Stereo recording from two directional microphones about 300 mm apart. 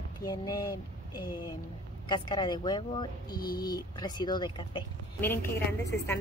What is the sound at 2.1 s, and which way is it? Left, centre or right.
Speech, centre.